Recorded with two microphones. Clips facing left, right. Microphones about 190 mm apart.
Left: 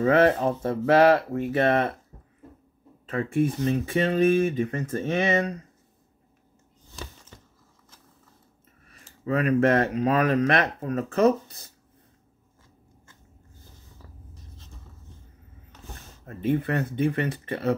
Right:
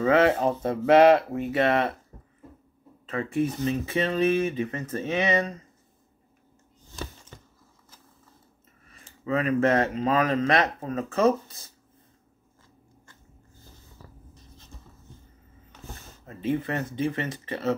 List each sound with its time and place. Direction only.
0.0 s speech: 55° left (ahead or behind)
0.6 s speech: 25° right (ahead or behind)
1.6 s speech: 45° left (ahead or behind)
3.1 s speech: 50° left (ahead or behind)
9.0 s speech: 40° left (ahead or behind); by 11.6 s 60° left (ahead or behind)
16.3 s speech: 50° left (ahead or behind)